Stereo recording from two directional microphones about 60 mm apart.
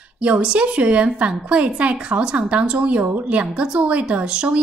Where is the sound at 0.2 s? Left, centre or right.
Centre.